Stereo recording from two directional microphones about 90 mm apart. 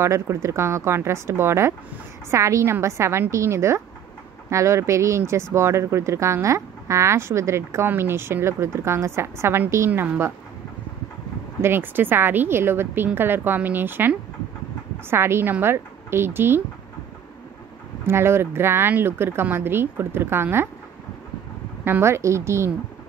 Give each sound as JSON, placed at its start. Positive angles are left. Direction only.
{"t": 0.0, "sound": "speech", "side_deg": -30}
{"t": 11.6, "sound": "speech", "side_deg": -25}
{"t": 18.0, "sound": "speech", "side_deg": -30}
{"t": 21.8, "sound": "speech", "side_deg": -25}